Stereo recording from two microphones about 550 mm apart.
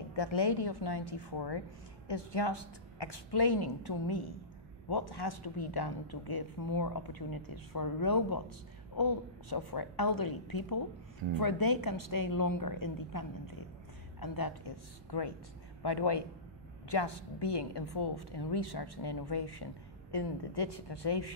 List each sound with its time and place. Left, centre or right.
0.7 s a woman's voice: left